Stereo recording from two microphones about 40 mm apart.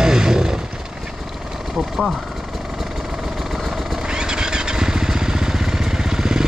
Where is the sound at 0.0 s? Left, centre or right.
Centre.